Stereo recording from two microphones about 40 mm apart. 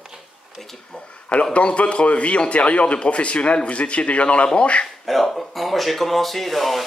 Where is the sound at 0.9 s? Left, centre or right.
Centre.